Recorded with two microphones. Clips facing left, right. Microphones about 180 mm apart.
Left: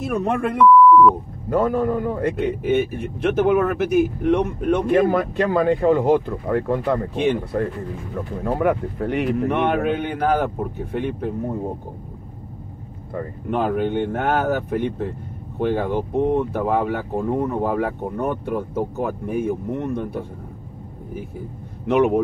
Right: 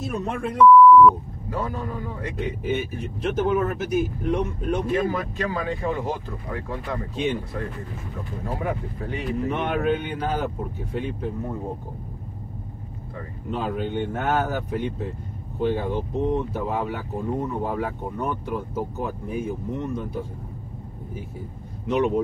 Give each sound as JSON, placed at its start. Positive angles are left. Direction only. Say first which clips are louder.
{"t": 0.0, "sound": "a man's voice", "louder": "left 6 dB", "side_deg": 60}
{"t": 13.1, "sound": "a man's voice", "louder": "left 7 dB", "side_deg": 60}
{"t": 21.8, "sound": "a man's voice", "louder": "left 5 dB", "side_deg": 60}